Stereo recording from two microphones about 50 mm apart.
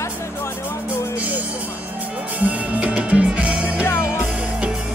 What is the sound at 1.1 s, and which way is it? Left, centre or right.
Speech, right.